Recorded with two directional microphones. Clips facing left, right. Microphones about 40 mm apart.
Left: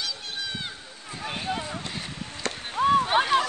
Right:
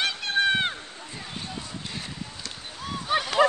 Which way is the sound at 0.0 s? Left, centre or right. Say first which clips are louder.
Right 9 dB; right.